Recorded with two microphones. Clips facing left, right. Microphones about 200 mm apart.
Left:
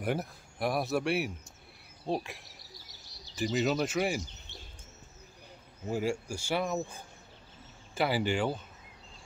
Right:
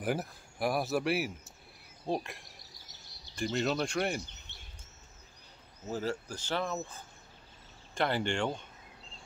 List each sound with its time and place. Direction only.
0.0 s speech: centre (ahead or behind)
4.5 s bird: 60° right (ahead or behind)
5.9 s speech: 10° left (ahead or behind)